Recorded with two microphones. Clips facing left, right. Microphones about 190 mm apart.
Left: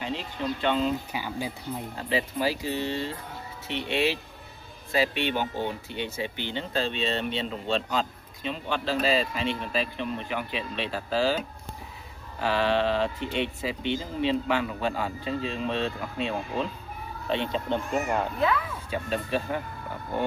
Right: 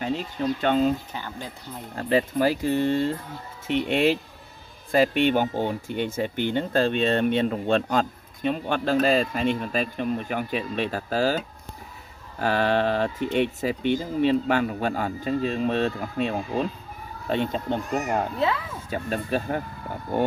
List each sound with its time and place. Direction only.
0.0 s speech: 45° right (ahead or behind)
1.1 s speech: 10° left (ahead or behind)
2.0 s speech: 50° right (ahead or behind)
12.4 s speech: 45° right (ahead or behind)
18.4 s speech: 25° right (ahead or behind)
18.9 s speech: 50° right (ahead or behind)